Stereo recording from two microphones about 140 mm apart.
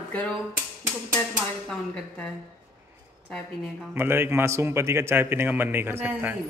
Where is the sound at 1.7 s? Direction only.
5° left (ahead or behind).